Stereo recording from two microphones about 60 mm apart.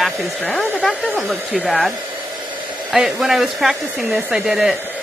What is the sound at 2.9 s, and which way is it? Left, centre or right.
Speech, centre.